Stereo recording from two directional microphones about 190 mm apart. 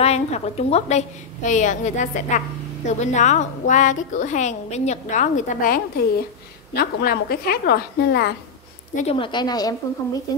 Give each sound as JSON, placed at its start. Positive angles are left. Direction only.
{"t": 0.0, "sound": "a woman's voice", "side_deg": 35}
{"t": 8.9, "sound": "a woman's voice", "side_deg": 30}